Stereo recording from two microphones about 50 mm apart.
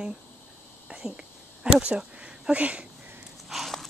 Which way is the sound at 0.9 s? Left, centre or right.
Centre.